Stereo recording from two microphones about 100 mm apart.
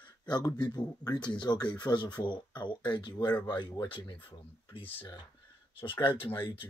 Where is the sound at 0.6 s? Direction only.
40° left (ahead or behind).